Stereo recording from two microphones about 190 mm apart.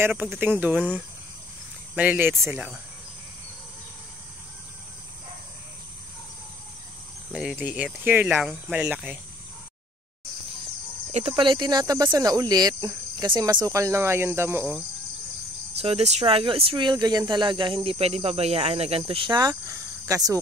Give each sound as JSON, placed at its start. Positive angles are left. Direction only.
{"t": 0.0, "sound": "speech", "side_deg": -10}
{"t": 2.0, "sound": "speech", "side_deg": -10}
{"t": 7.3, "sound": "speech", "side_deg": -5}
{"t": 11.1, "sound": "speech", "side_deg": -35}
{"t": 15.8, "sound": "speech", "side_deg": -35}